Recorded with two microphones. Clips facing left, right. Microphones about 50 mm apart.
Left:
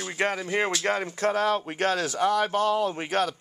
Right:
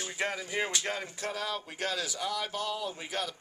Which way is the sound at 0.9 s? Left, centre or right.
Left.